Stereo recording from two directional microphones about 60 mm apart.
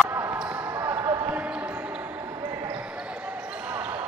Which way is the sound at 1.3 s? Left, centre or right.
Right.